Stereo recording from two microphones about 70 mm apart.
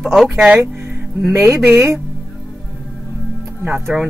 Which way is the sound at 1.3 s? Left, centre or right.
Right.